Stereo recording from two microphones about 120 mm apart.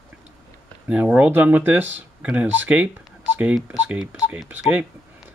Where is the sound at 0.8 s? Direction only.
10° right (ahead or behind).